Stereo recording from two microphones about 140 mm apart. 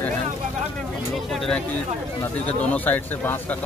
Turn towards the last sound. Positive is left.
turn(degrees=10)  # may be behind; listen again after turning